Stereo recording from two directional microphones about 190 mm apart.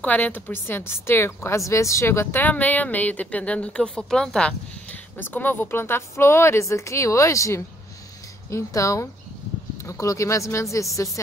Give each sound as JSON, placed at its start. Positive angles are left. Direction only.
{"t": 0.0, "sound": "a woman's voice", "side_deg": 10}